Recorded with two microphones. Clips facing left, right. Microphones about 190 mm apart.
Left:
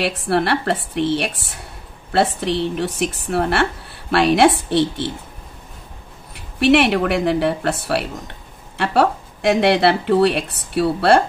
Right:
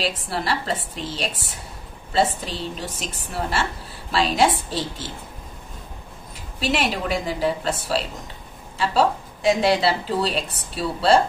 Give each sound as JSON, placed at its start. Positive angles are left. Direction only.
{"t": 0.0, "sound": "a woman's voice", "side_deg": 65}
{"t": 6.3, "sound": "a woman's voice", "side_deg": 65}